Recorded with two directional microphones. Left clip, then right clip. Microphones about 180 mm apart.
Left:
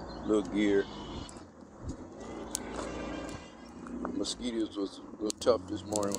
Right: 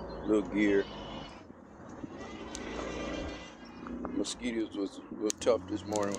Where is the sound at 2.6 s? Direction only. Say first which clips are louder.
Right 2 dB; 15° left (ahead or behind).